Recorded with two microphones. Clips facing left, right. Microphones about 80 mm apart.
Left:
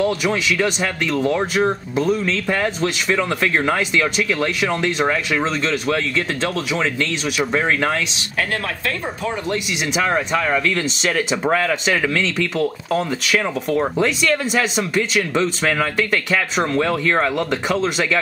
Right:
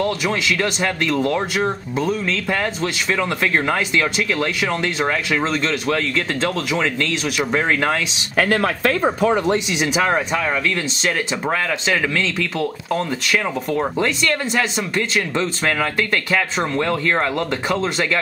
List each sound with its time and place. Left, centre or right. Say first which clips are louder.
0.0 s speech: left 1 dB; centre
8.4 s speech: right 6 dB; right
9.5 s speech: right 4 dB; right
10.0 s speech: even; centre